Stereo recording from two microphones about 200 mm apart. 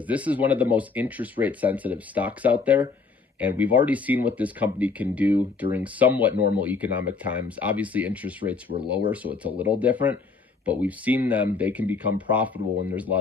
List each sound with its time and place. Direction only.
0.1 s speech: 5° right (ahead or behind)